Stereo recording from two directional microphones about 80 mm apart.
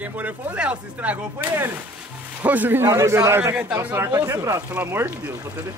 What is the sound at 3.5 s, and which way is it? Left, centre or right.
Speech, right.